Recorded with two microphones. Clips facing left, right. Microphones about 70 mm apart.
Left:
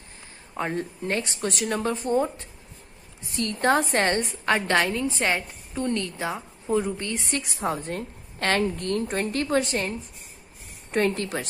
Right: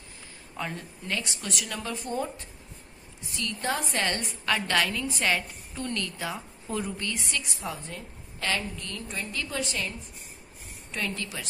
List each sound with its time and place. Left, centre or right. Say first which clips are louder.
0.6 s a woman's voice: left 7 dB; left